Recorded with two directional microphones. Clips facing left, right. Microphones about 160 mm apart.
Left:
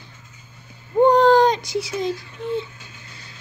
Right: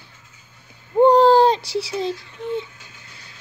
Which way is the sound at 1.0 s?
35° right (ahead or behind).